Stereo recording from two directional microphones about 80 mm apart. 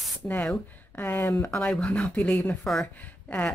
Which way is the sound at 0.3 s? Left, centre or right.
Left.